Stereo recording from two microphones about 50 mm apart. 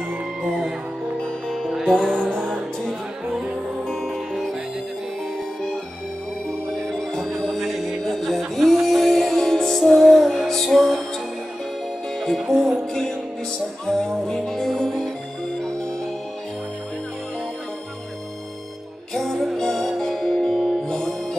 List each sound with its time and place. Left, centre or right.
0.4 s music: centre
1.9 s music: centre
6.9 s music: centre
12.2 s music: centre
19.1 s music: centre